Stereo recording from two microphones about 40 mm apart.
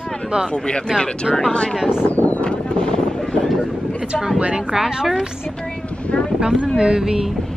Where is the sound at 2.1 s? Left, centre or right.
Left.